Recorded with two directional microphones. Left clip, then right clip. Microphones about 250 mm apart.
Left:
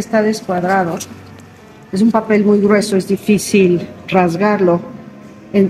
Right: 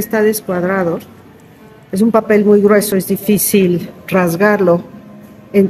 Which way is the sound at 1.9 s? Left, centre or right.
Right.